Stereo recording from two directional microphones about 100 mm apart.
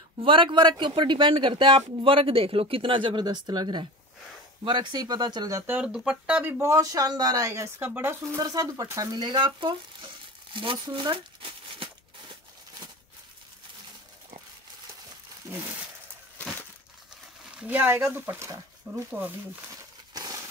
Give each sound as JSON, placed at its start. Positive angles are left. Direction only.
{"t": 0.2, "sound": "speech", "side_deg": -55}
{"t": 5.7, "sound": "speech", "side_deg": -15}
{"t": 6.6, "sound": "speech", "side_deg": -30}
{"t": 7.8, "sound": "speech", "side_deg": -20}
{"t": 8.4, "sound": "speech", "side_deg": -35}
{"t": 9.1, "sound": "speech", "side_deg": -50}
{"t": 17.5, "sound": "speech", "side_deg": -15}
{"t": 19.0, "sound": "speech", "side_deg": -15}
{"t": 19.7, "sound": "crumpling", "side_deg": -35}